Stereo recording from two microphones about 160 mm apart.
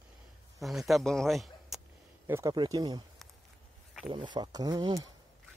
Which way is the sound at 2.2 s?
20° right (ahead or behind).